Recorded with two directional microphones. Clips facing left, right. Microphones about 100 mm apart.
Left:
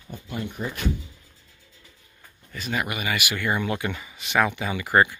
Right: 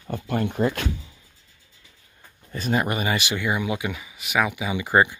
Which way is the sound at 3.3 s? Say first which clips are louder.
Right 1 dB; 10° right (ahead or behind).